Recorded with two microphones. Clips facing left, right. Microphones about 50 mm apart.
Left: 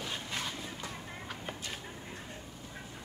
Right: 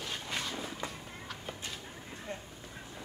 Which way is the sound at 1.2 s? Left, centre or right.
Left.